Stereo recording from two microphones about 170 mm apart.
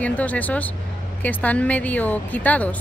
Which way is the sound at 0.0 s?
10° left (ahead or behind).